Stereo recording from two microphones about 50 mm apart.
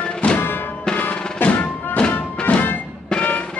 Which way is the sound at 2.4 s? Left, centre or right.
Left.